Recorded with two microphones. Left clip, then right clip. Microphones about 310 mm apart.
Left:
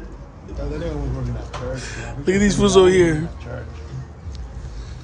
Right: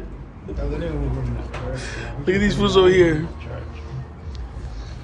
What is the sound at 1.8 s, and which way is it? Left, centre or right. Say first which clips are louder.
Speech: even; centre.